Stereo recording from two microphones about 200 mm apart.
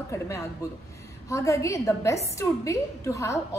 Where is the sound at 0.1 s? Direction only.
15° left (ahead or behind).